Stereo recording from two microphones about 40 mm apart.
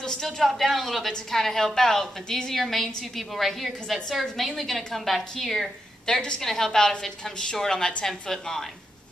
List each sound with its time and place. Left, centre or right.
0.0 s a sound: centre
0.4 s a woman's voice: centre
1.0 s a woman's voice: centre
6.0 s a woman's voice: left
6.4 s a woman's voice: centre